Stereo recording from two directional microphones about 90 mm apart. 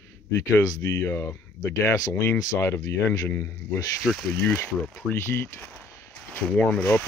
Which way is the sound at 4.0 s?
5° left (ahead or behind).